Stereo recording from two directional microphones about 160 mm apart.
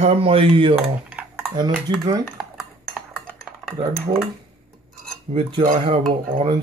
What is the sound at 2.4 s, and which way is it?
Cutlery, 10° right (ahead or behind).